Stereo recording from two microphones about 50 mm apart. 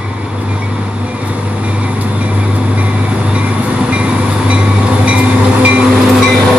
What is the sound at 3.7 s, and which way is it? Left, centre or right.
Train, centre.